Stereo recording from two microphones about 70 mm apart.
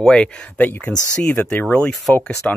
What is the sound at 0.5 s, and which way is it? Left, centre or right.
Speech, left.